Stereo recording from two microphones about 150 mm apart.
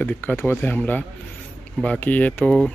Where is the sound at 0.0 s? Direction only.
10° left (ahead or behind).